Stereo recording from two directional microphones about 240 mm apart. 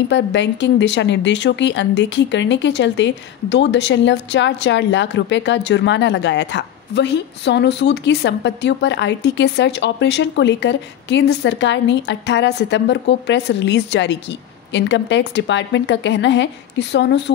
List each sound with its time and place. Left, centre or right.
0.1 s speech: left